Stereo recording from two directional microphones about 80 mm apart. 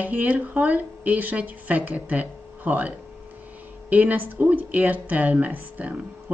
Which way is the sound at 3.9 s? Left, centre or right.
Right.